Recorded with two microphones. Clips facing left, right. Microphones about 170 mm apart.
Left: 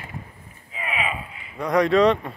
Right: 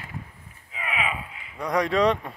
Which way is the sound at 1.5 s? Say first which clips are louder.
Left 5 dB; 10° right (ahead or behind).